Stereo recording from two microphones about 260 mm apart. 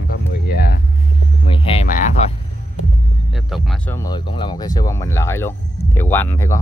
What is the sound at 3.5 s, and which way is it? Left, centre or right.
Speech, centre.